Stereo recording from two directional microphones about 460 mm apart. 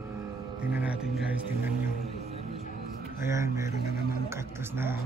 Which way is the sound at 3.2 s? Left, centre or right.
Centre.